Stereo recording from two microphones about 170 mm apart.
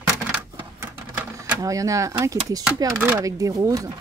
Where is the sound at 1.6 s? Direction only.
20° right (ahead or behind).